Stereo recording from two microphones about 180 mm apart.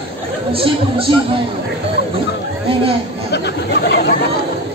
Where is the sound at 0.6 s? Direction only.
30° right (ahead or behind).